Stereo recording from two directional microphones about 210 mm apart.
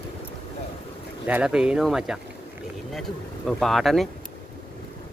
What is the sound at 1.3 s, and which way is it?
Speech, 5° right (ahead or behind).